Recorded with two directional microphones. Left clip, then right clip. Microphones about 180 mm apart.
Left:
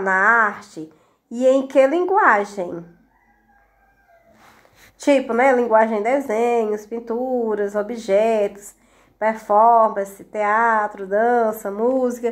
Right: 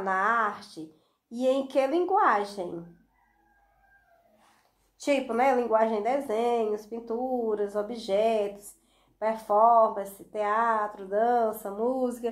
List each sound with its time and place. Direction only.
0.0 s a woman's voice: 35° left (ahead or behind)
5.0 s a woman's voice: 40° left (ahead or behind)